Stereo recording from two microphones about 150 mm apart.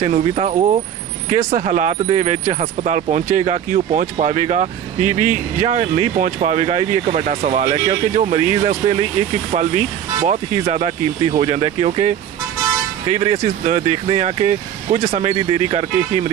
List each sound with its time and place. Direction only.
0.0 s speech: 40° right (ahead or behind)
7.7 s speech: 30° right (ahead or behind)
8.2 s speech: 50° right (ahead or behind)